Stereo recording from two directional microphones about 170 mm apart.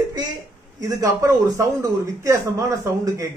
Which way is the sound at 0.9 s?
20° right (ahead or behind).